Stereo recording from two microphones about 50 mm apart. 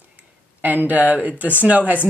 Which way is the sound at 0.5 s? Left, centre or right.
Right.